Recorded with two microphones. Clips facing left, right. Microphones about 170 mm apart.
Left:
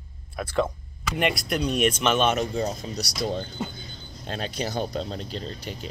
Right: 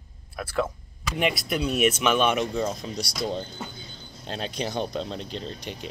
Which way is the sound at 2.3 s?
40° left (ahead or behind).